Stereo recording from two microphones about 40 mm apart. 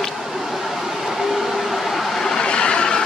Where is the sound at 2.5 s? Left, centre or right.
Left.